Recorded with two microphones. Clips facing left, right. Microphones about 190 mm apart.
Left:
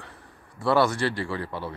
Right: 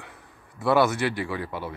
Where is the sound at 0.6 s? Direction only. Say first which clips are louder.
Right 1 dB; 20° right (ahead or behind).